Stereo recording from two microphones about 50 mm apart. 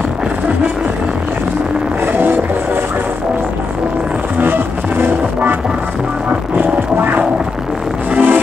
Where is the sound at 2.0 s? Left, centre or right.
Right.